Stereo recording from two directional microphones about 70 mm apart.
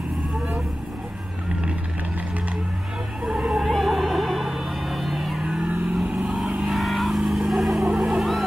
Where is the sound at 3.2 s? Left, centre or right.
Centre.